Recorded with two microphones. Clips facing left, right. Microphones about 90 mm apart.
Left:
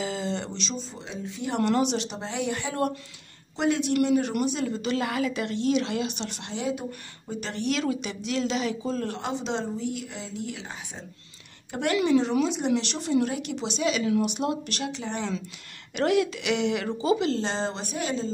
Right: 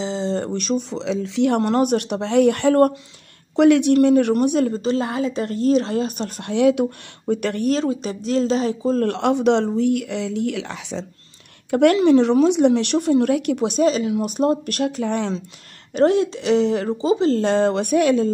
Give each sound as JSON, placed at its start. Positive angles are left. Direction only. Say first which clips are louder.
{"t": 0.0, "sound": "a sound", "louder": "right 6 dB", "side_deg": -30}
{"t": 0.4, "sound": "speech", "louder": "right 11 dB", "side_deg": -55}
{"t": 1.6, "sound": "speech", "louder": "right 6 dB", "side_deg": -45}
{"t": 4.8, "sound": "speech", "louder": "right 5 dB", "side_deg": -35}
{"t": 7.6, "sound": "speech", "louder": "right 4 dB", "side_deg": -35}
{"t": 9.0, "sound": "speech", "louder": "right 13 dB", "side_deg": -60}
{"t": 11.7, "sound": "speech", "louder": "right 9 dB", "side_deg": -60}
{"t": 15.9, "sound": "speech", "louder": "right 7 dB", "side_deg": -35}
{"t": 17.3, "sound": "speech", "louder": "right 10 dB", "side_deg": -50}